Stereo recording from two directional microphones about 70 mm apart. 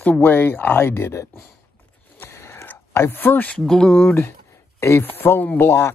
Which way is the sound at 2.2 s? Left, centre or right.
Left.